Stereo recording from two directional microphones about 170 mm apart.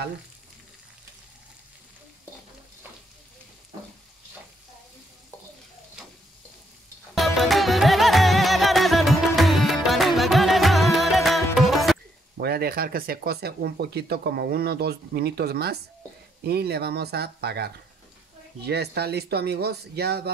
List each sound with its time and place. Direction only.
7.2 s music: centre (ahead or behind)
12.4 s speech: 70° right (ahead or behind)